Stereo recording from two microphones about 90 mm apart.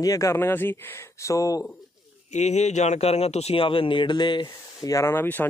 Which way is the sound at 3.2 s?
85° left.